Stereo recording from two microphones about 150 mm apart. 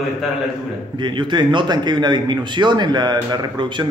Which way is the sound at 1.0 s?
30° right (ahead or behind).